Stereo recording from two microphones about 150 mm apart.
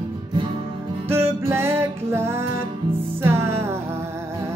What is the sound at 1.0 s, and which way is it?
Music, 15° right (ahead or behind).